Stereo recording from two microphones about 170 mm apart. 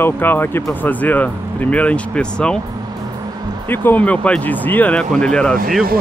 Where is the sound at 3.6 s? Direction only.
10° left (ahead or behind).